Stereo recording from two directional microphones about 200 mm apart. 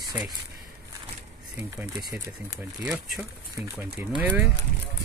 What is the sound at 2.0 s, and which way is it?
Speech, 15° right (ahead or behind).